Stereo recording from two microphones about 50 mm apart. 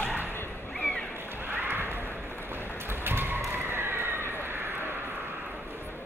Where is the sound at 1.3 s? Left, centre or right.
Right.